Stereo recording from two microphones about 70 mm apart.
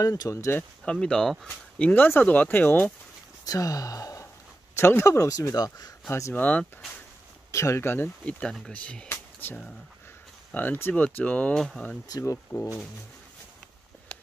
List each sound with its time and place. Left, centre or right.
0.0 s speech: left
0.8 s speech: centre
1.8 s speech: centre
3.4 s speech: left
4.7 s speech: left
6.3 s speech: left
7.5 s speech: left
8.3 s speech: centre
9.1 s music: left
10.5 s speech: left
11.5 s speech: centre
12.1 s speech: left
14.1 s a sound: centre